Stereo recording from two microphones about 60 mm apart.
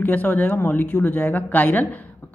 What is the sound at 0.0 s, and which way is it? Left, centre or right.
Speech, left.